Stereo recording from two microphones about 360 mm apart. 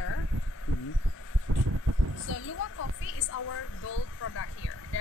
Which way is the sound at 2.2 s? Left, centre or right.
Left.